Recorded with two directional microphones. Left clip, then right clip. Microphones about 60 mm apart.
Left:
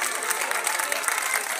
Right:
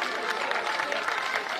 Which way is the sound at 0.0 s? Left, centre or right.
Left.